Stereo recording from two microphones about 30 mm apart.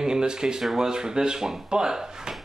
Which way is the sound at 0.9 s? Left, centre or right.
Right.